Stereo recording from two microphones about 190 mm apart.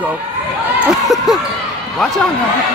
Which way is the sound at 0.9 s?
Centre (ahead or behind).